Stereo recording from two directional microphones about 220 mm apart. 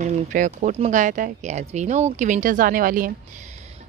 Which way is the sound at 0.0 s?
35° right (ahead or behind).